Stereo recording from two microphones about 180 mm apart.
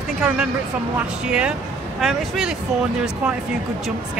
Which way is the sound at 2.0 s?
Centre (ahead or behind).